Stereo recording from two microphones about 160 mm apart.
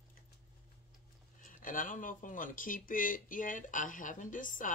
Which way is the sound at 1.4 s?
60° left (ahead or behind).